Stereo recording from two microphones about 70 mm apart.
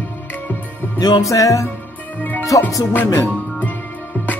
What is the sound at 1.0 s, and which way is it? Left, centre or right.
Speech, left.